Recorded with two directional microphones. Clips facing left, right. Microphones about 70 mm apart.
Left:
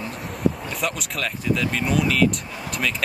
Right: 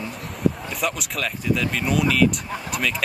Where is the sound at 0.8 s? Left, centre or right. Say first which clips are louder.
Right 1 dB; centre.